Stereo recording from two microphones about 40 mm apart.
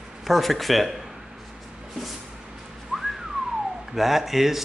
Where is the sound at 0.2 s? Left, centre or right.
Centre.